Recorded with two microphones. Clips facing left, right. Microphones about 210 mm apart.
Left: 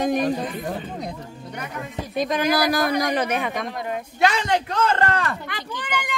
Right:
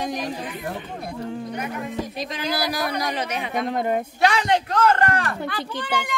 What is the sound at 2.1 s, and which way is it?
A woman's voice, 50° left (ahead or behind).